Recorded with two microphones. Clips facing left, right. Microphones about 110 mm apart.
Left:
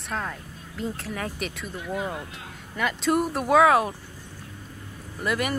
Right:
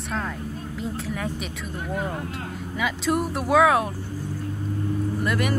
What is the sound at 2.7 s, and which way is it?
Speech, centre (ahead or behind).